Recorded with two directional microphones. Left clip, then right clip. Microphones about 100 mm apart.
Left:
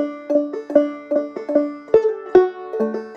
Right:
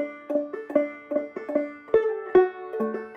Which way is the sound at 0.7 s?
25° left (ahead or behind).